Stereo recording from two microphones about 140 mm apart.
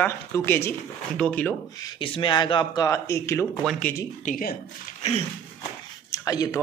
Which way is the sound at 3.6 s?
5° left (ahead or behind).